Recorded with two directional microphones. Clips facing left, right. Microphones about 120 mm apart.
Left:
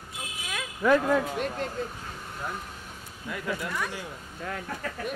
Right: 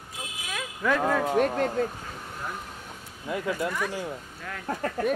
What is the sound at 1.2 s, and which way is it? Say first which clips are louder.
Speech: right 7 dB; 50° right (ahead or behind).